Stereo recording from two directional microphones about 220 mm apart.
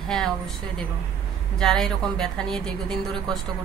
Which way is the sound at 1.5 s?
Centre (ahead or behind).